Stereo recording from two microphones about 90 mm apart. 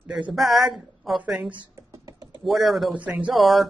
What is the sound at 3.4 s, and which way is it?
Speech, centre (ahead or behind).